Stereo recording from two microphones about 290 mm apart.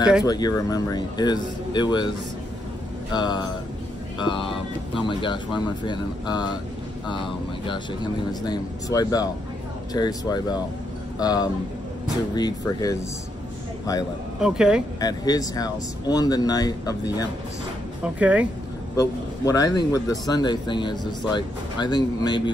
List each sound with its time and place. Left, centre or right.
0.2 s speech: centre
3.1 s speech: centre
14.4 s speech: centre
15.0 s speech: centre
18.0 s speech: centre
18.9 s speech: centre